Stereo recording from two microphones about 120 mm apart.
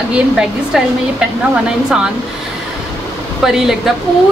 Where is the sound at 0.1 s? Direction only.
5° right (ahead or behind).